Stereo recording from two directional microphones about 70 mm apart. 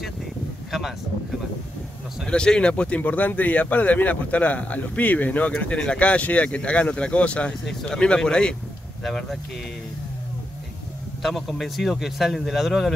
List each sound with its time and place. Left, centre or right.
0.7 s speech: centre
2.2 s speech: centre
9.0 s speech: centre
11.2 s speech: centre